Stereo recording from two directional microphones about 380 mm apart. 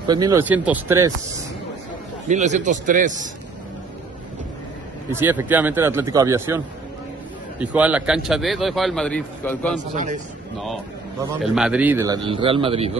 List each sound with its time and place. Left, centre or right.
0.0 s speech: centre
2.2 s a man's voice: centre
5.1 s a man's voice: centre
11.5 s speech: centre